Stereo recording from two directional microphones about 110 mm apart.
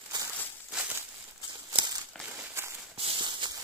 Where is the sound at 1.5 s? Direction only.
40° right (ahead or behind).